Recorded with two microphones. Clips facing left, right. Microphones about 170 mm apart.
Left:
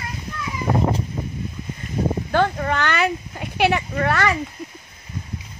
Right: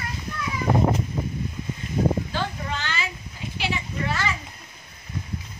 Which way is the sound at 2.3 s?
60° left (ahead or behind).